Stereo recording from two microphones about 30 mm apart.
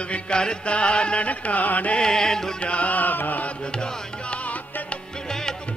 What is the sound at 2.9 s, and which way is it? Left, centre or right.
Chant, left.